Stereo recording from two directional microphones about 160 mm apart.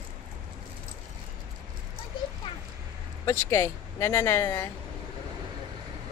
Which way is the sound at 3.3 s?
15° left (ahead or behind).